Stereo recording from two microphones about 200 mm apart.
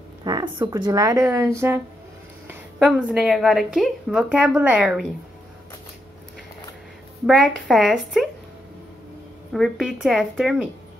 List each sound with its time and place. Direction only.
0.2 s speech: 20° right (ahead or behind)
2.8 s a woman's voice: 5° right (ahead or behind)
7.2 s a woman's voice: centre (ahead or behind)
9.5 s a woman's voice: centre (ahead or behind)